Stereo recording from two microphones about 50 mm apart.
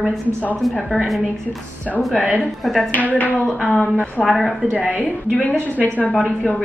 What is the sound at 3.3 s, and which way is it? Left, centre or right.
Speech, centre.